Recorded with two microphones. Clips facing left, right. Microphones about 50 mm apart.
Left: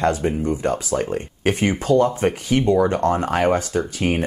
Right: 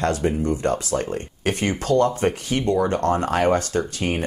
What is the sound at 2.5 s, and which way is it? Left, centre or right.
Speech, left.